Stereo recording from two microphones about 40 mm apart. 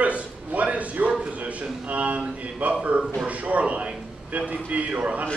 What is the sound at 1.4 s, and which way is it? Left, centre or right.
A man's voice, right.